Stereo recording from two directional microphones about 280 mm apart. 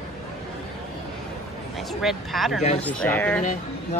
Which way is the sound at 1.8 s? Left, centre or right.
Centre.